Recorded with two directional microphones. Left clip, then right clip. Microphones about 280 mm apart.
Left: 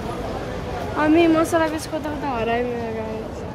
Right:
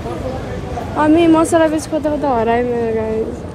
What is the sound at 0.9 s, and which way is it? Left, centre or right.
Speech, centre.